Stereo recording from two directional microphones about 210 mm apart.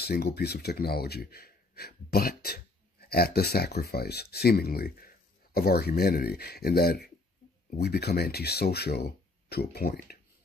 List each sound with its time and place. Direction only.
0.0 s speech: 50° left (ahead or behind)